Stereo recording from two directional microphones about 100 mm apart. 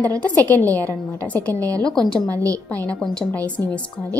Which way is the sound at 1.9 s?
5° left (ahead or behind).